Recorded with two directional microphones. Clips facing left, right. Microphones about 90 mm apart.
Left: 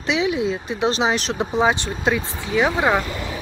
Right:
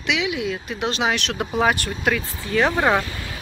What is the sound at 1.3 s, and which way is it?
Speech, 25° left (ahead or behind).